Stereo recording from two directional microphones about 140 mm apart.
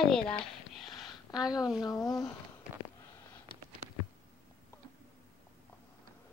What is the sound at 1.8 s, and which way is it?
Speech, 30° left (ahead or behind).